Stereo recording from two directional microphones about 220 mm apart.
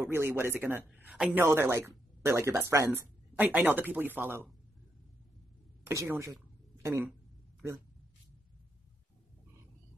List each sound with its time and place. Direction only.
0.0 s speech: 10° right (ahead or behind)
5.9 s speech: 10° right (ahead or behind)